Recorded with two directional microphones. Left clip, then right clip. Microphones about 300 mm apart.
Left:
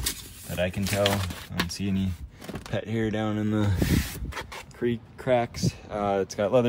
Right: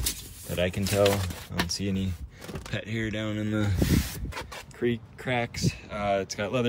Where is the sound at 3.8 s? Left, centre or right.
Centre.